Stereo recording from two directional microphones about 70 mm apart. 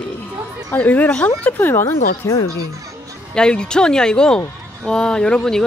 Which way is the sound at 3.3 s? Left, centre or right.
Centre.